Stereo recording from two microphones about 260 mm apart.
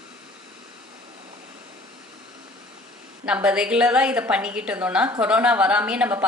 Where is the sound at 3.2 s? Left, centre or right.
Centre.